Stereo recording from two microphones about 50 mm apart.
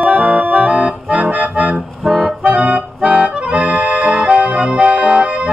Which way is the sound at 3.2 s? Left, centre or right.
Right.